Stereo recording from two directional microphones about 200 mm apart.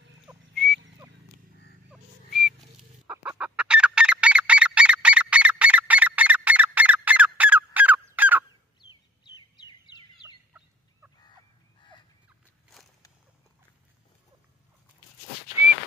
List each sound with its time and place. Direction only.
0.3 s a sound: 5° right (ahead or behind)
1.9 s chicken: 5° right (ahead or behind)
9.2 s bird: 20° left (ahead or behind)